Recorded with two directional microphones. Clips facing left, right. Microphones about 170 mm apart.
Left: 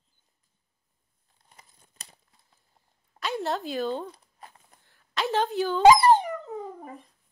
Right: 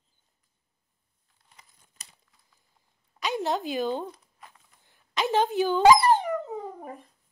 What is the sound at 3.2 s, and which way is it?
Speech, centre (ahead or behind).